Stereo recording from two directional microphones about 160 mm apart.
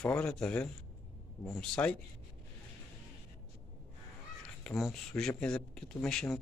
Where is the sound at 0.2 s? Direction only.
5° left (ahead or behind).